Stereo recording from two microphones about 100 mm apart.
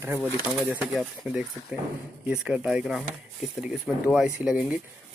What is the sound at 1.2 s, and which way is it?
Speech, 5° right (ahead or behind).